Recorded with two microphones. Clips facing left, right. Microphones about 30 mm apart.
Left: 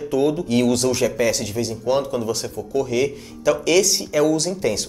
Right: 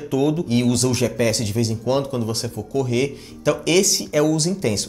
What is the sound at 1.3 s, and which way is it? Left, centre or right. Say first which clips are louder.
Speech: right 1 dB; right.